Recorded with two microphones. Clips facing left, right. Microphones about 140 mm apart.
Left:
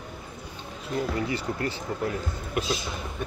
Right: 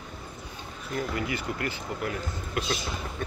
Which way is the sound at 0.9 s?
30° left (ahead or behind).